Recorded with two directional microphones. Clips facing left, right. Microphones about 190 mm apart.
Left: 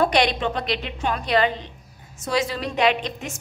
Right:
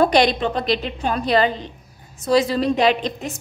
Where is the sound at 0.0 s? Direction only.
35° right (ahead or behind).